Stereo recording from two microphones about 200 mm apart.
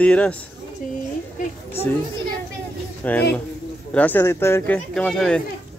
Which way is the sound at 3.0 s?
10° left (ahead or behind).